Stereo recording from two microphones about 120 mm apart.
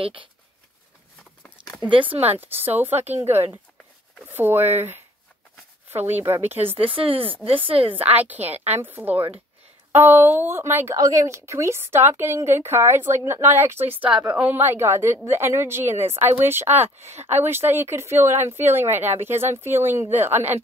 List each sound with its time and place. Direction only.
0.0 s speech: 45° right (ahead or behind)
1.8 s speech: 45° right (ahead or behind)
2.4 s a woman's voice: 15° right (ahead or behind)
6.0 s a woman's voice: 15° right (ahead or behind)
6.8 s speech: 50° right (ahead or behind)
7.9 s a woman's voice: 15° right (ahead or behind)
16.7 s speech: 65° right (ahead or behind)
17.2 s a woman's voice: 20° right (ahead or behind)